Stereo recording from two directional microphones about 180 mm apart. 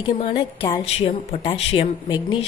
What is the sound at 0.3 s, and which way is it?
A woman's voice, 25° left (ahead or behind).